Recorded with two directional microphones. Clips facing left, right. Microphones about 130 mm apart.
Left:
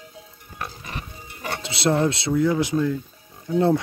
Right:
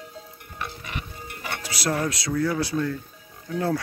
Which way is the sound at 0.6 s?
35° left (ahead or behind).